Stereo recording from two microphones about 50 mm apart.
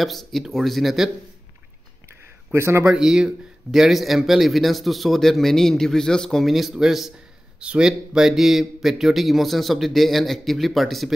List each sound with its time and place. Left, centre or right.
0.0 s a man's voice: centre
2.0 s a sound: right
2.9 s a man's voice: centre
6.4 s a man's voice: centre
7.6 s a man's voice: centre